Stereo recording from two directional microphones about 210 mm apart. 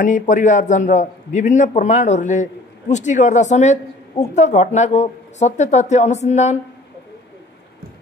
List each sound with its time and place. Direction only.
0.0 s a man's voice: 35° left (ahead or behind)